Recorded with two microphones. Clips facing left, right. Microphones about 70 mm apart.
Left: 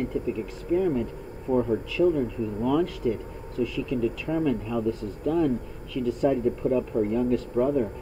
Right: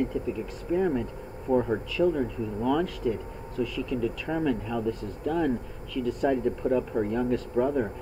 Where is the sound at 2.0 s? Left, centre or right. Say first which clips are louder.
Left 2 dB; right.